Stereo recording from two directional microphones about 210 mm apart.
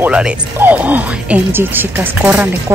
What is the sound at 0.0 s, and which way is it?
Speech, 5° right (ahead or behind).